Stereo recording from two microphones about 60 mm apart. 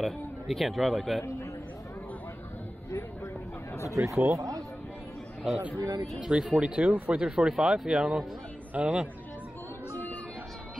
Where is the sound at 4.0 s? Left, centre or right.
Right.